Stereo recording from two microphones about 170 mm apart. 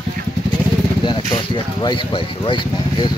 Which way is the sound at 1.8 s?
30° left (ahead or behind).